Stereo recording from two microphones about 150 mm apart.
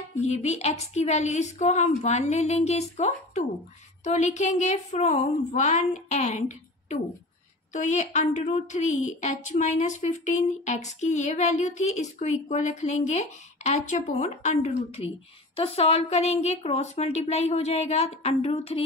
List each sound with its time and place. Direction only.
0.2 s a woman's voice: 50° left (ahead or behind)
7.7 s a woman's voice: 55° left (ahead or behind)